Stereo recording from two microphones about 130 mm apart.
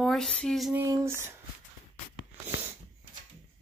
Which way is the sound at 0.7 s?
20° right (ahead or behind).